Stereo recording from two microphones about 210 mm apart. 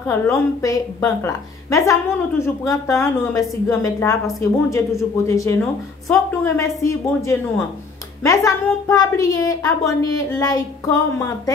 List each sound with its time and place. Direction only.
0.0 s a woman's voice: 15° left (ahead or behind)